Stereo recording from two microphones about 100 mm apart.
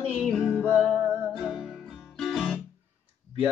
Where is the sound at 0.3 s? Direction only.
10° left (ahead or behind).